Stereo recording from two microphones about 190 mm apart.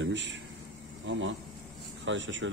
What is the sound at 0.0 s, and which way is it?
Speech, 75° right (ahead or behind).